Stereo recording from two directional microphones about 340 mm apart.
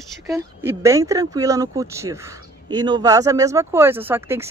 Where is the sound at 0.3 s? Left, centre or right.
Centre.